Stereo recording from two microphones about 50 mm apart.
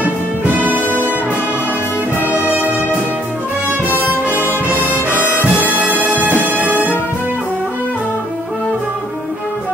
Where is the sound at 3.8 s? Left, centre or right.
Left.